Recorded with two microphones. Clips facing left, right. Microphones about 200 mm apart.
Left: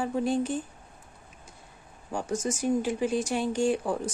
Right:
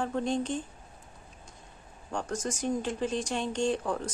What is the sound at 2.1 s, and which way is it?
Speech, 10° left (ahead or behind).